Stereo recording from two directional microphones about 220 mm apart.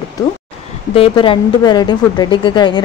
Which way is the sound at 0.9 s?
25° left (ahead or behind).